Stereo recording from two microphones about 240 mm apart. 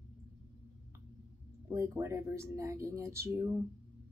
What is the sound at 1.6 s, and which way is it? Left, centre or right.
Speech, centre.